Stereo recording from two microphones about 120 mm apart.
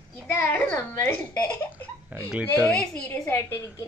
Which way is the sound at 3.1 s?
20° left (ahead or behind).